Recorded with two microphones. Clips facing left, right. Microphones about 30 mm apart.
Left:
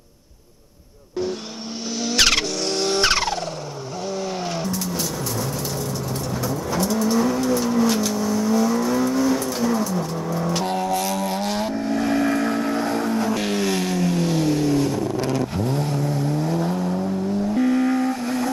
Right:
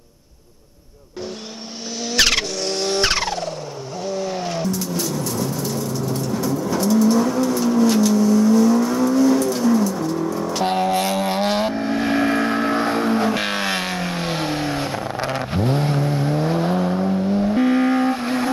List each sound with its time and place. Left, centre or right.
2.0 s vehicle: centre
6.4 s vehicle: centre
10.6 s vehicle: right